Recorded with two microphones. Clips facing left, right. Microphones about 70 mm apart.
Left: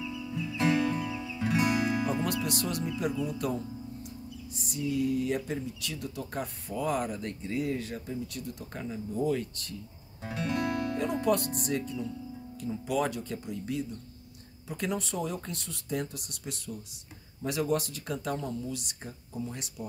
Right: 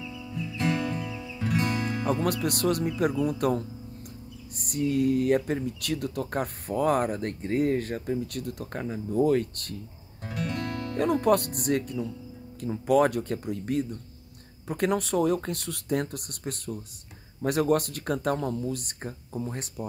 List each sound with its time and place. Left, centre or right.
0.0 s music: centre
2.2 s speech: right
10.2 s music: centre
11.0 s speech: right